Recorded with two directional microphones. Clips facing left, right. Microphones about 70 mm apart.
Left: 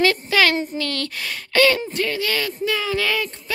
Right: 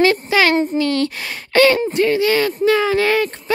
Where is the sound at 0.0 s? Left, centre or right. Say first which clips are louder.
Right 4 dB; right.